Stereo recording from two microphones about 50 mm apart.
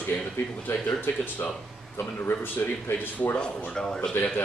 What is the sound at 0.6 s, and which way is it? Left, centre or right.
Speech, left.